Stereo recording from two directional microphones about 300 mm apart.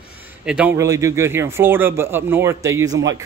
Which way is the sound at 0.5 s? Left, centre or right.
Centre.